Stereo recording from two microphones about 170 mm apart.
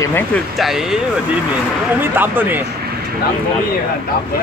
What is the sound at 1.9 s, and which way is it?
Speech, 10° right (ahead or behind).